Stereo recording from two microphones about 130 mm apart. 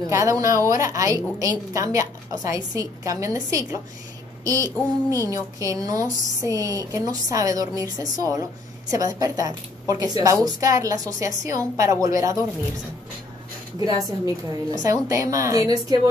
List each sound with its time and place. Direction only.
0.1 s a woman's voice: 25° right (ahead or behind)
13.8 s a woman's voice: 25° right (ahead or behind)